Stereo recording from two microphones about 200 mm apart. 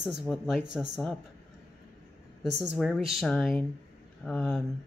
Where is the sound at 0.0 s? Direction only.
5° right (ahead or behind).